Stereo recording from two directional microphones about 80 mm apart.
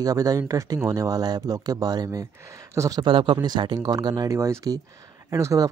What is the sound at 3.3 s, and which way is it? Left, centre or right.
Speech, right.